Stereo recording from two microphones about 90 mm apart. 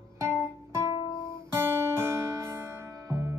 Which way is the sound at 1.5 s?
25° right (ahead or behind).